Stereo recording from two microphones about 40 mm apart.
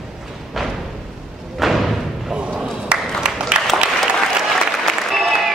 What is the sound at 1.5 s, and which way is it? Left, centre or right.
Thump, centre.